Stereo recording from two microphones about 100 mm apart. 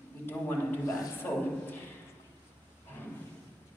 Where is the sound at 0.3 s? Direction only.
20° left (ahead or behind).